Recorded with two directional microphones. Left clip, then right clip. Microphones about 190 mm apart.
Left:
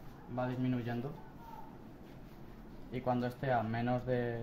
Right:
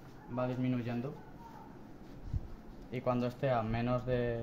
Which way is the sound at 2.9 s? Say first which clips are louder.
Right 1 dB; 35° right (ahead or behind).